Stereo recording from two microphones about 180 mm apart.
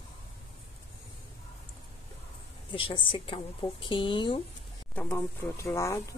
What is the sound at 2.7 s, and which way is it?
Speech, 30° left (ahead or behind).